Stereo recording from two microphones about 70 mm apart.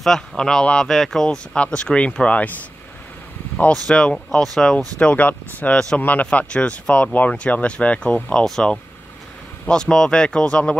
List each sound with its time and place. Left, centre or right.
0.0 s speech: centre
3.5 s speech: centre
3.8 s speech: centre
4.9 s speech: centre